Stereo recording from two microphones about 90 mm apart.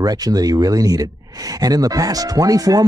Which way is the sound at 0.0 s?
45° right (ahead or behind).